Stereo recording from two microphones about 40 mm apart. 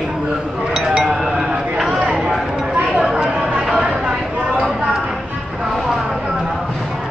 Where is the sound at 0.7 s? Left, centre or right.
Centre.